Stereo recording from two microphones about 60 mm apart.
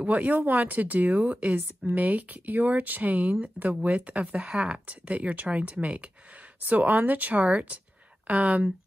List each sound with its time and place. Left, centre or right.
0.0 s speech: right